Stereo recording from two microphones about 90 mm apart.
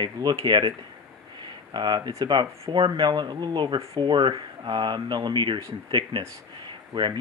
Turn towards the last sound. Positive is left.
turn(degrees=-60)  # may be behind; listen again after turning